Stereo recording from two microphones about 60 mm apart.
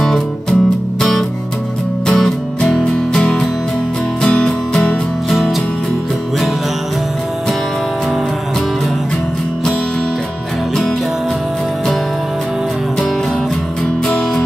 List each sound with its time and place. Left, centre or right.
0.0 s music: centre
2.0 s music: centre
4.3 s music: centre
5.3 s music: centre
14.0 s music: centre